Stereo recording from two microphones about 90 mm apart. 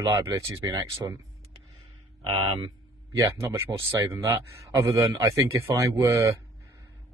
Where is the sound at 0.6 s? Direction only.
45° right (ahead or behind).